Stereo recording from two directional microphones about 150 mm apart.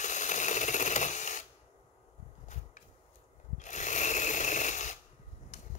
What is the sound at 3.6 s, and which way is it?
Sewing machine, 55° left (ahead or behind).